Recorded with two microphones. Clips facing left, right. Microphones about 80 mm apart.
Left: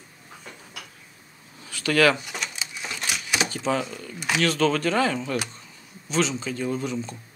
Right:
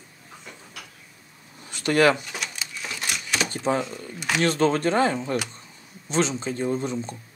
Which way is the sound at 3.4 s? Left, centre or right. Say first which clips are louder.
Right 3 dB; right.